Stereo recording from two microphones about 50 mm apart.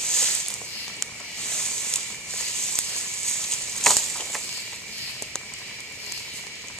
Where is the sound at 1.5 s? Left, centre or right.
Centre.